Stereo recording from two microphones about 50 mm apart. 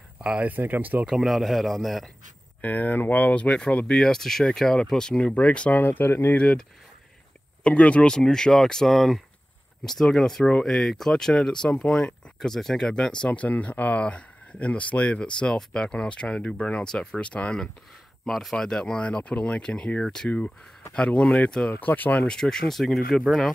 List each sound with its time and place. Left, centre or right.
0.2 s speech: right
0.5 s speech: right
1.0 s a man's voice: centre
2.6 s speech: left
5.7 s speech: left
6.3 s speech: left
7.6 s speech: left
8.1 s speech: centre
18.2 s speech: centre; by 21.5 s left
21.6 s speech: left
22.2 s speech: centre